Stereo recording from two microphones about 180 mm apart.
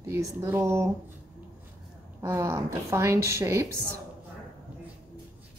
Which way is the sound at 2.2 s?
15° right (ahead or behind).